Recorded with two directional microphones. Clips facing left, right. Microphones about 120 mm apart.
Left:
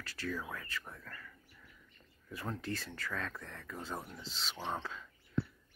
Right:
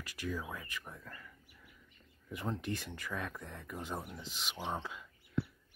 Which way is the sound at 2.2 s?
20° right (ahead or behind).